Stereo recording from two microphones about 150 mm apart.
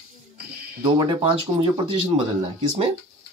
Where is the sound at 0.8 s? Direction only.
30° right (ahead or behind).